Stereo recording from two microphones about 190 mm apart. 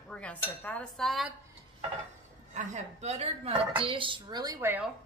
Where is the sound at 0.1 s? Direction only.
5° left (ahead or behind).